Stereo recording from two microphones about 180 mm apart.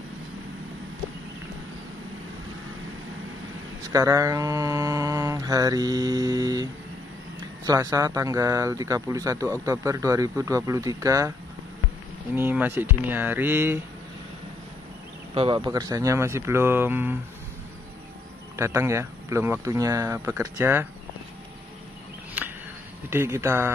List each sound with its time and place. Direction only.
3.9 s mantra: 20° right (ahead or behind)
7.6 s speech: 20° right (ahead or behind)
12.4 s speech: 10° right (ahead or behind)
15.3 s speech: 30° right (ahead or behind); by 17.2 s 10° right (ahead or behind)
18.6 s speech: 15° right (ahead or behind)
22.4 s a sound: 5° right (ahead or behind)
23.0 s speech: 15° right (ahead or behind)